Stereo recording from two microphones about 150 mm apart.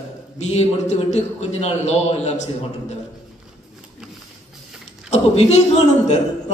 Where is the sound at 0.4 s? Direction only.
50° left (ahead or behind).